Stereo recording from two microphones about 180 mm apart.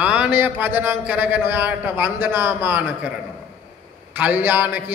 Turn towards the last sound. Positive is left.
turn(degrees=-10)  # may be behind; listen again after turning